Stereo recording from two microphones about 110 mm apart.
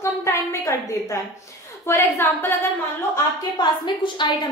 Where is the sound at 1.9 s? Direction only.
20° left (ahead or behind).